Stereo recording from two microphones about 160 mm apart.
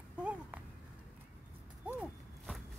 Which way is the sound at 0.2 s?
10° right (ahead or behind).